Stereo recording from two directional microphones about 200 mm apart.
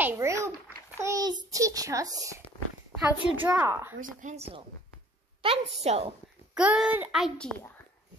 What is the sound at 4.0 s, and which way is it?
A woman's voice, 40° right (ahead or behind).